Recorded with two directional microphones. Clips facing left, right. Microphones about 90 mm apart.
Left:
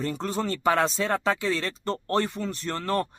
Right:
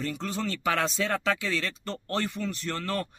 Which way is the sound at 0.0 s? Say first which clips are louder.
Left 3 dB; 35° left (ahead or behind).